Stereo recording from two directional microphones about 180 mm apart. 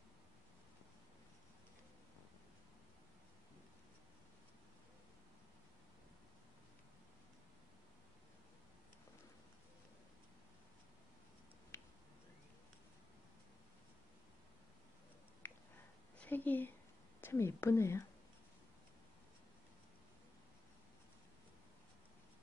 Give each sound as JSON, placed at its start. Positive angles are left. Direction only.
{"t": 11.7, "sound": "finger snapping", "side_deg": 15}
{"t": 15.4, "sound": "a sound", "side_deg": 10}
{"t": 16.2, "sound": "a woman's voice", "side_deg": 10}